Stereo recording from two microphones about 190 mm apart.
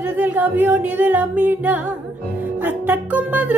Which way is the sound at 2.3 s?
10° right (ahead or behind).